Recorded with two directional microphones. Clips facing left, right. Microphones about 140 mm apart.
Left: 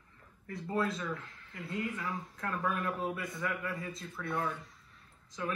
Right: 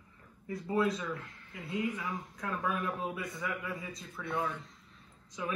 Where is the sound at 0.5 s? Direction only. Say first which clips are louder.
Right 3 dB; centre (ahead or behind).